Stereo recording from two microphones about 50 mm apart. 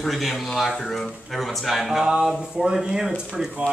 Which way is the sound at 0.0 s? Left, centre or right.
Centre.